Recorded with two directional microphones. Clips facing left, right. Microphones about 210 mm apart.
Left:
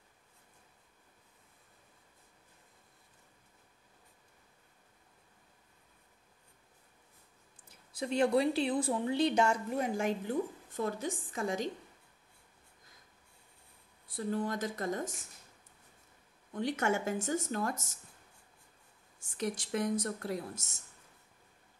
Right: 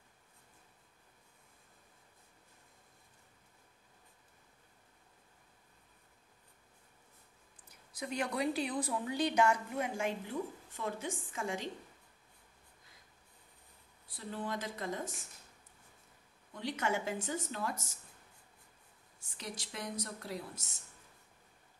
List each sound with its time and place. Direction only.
7.9 s a woman's voice: 30° left (ahead or behind)
14.1 s speech: 45° left (ahead or behind)
16.5 s speech: 50° left (ahead or behind)
19.1 s speech: 50° left (ahead or behind)